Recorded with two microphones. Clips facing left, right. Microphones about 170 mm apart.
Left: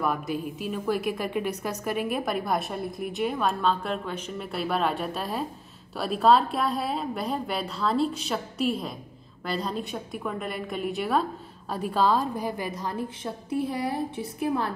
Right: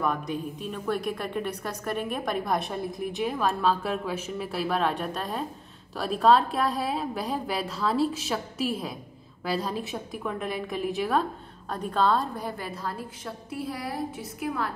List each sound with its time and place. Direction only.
0.0 s a woman's voice: 5° left (ahead or behind); by 14.7 s 30° left (ahead or behind)